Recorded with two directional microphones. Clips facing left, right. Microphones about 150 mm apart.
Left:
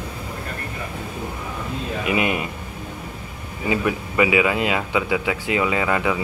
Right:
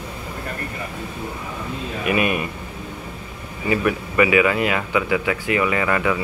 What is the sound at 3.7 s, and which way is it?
Speech, 15° left (ahead or behind).